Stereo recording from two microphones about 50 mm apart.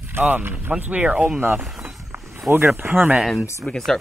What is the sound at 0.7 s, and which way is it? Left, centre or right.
Speech, right.